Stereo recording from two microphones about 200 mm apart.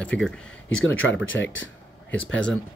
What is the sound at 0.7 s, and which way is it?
Speech, 75° left (ahead or behind).